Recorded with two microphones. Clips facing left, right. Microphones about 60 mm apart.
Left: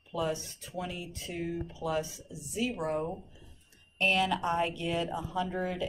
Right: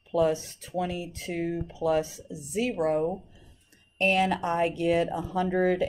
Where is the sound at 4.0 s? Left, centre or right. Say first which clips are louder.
Right 4 dB; right.